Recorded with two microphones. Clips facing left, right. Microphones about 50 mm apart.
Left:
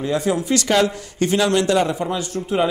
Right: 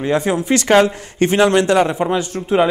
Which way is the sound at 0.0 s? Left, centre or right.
Right.